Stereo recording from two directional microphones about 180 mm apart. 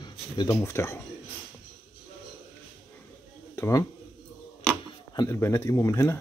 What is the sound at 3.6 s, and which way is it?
Speech, 20° left (ahead or behind).